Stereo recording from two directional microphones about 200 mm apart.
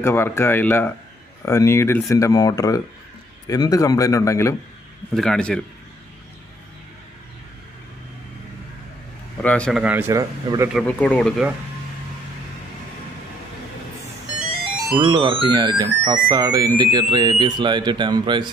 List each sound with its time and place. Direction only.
0.0 s speech: 10° left (ahead or behind)
5.1 s speech: 5° left (ahead or behind)
9.4 s a man's voice: 5° left (ahead or behind); by 10.7 s 15° right (ahead or behind)
10.7 s speech: 5° left (ahead or behind)
14.9 s speech: 20° right (ahead or behind)